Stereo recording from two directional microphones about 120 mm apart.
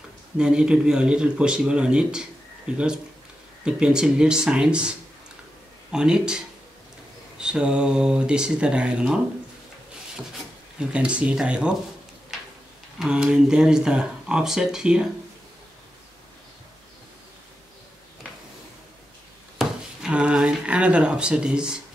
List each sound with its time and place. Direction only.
0.4 s speech: 5° right (ahead or behind)
10.8 s speech: 10° right (ahead or behind)
13.0 s speech: 10° right (ahead or behind)
19.6 s a sound: 5° right (ahead or behind)